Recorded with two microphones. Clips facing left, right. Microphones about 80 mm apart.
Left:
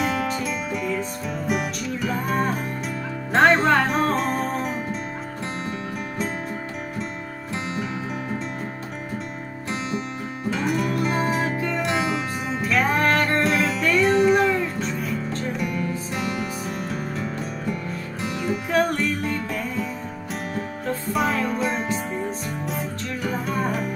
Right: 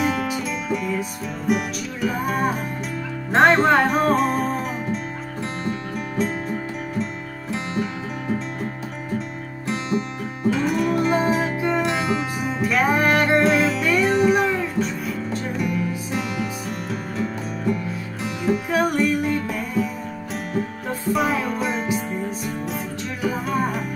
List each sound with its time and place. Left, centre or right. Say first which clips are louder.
0.0 s music: right 1 dB; centre
9.7 s music: right 4 dB; centre
11.4 s music: right 3 dB; centre
11.8 s music: right 1 dB; centre
13.4 s music: right 3 dB; centre
21.1 s music: right 2 dB; centre
23.2 s music: right 3 dB; centre